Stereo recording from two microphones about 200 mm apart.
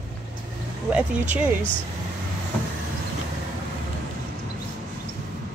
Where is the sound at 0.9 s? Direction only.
5° right (ahead or behind).